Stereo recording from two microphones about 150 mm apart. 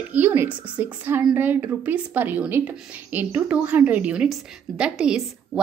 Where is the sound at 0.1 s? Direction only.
15° right (ahead or behind).